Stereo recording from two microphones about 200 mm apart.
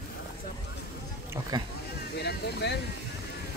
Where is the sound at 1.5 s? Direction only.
20° right (ahead or behind).